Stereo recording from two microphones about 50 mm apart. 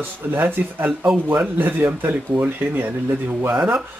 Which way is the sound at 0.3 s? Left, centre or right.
Right.